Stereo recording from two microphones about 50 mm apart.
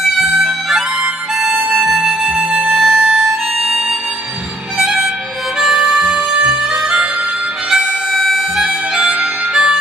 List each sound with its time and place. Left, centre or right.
0.4 s music: centre
2.7 s music: centre
3.0 s music: centre
4.7 s harmonica: centre
8.3 s harmonica: centre
9.1 s harmonica: right